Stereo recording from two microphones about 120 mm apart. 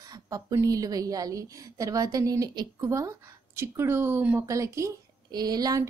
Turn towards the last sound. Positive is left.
turn(degrees=-35)  # may be behind; listen again after turning